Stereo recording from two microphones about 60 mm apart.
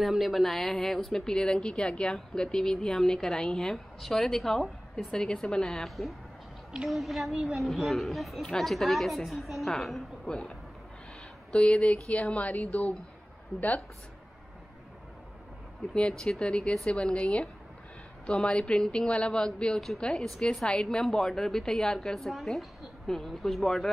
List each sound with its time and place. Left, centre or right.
0.0 s a woman's voice: centre
5.9 s a woman's voice: centre
10.3 s a woman's voice: centre
15.9 s a woman's voice: centre